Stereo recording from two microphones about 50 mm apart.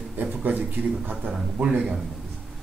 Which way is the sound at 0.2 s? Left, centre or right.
Right.